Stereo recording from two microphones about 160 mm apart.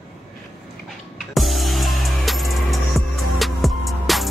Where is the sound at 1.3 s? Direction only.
Centre (ahead or behind).